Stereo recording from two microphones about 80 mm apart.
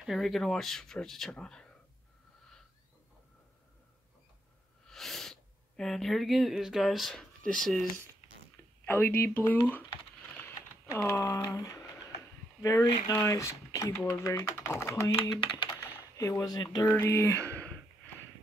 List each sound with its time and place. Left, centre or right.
0.0 s speech: centre
4.8 s speech: centre
8.8 s speech: left
10.9 s speech: left
13.1 s speech: left
16.2 s speech: left
17.0 s speech: left
17.5 s a sound: centre